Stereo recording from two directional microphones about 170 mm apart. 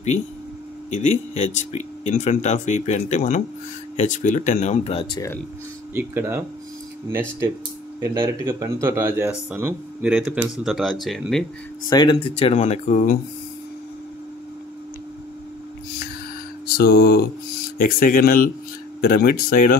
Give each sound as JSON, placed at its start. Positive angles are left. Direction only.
{"t": 0.9, "sound": "speech", "side_deg": 40}
{"t": 5.9, "sound": "speech", "side_deg": -15}
{"t": 11.9, "sound": "speech", "side_deg": 25}
{"t": 16.7, "sound": "speech", "side_deg": 65}